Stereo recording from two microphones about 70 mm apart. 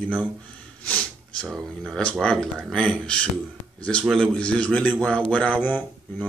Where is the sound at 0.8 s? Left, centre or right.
Centre.